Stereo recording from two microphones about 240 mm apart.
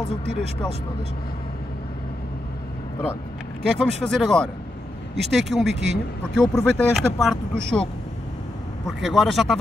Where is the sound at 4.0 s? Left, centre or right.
Centre.